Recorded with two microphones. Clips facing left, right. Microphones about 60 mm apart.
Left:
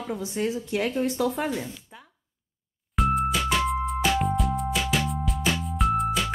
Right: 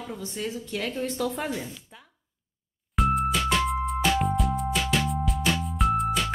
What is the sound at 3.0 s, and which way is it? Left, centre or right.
Music, centre.